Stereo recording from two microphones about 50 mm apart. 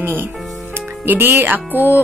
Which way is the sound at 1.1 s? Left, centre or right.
Right.